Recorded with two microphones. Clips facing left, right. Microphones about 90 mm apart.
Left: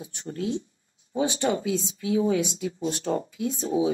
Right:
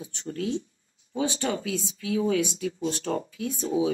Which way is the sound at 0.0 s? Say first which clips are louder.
Even; 15° left (ahead or behind).